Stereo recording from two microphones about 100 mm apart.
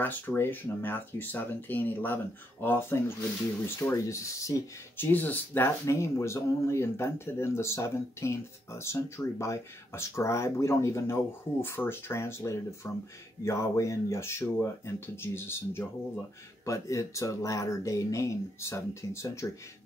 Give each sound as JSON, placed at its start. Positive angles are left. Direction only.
{"t": 0.0, "sound": "speech", "side_deg": 20}
{"t": 4.9, "sound": "speech", "side_deg": 20}